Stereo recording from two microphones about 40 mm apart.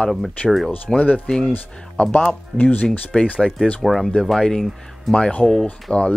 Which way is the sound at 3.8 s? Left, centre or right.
Centre.